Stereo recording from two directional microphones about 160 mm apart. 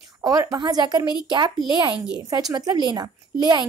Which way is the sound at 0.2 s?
25° right (ahead or behind).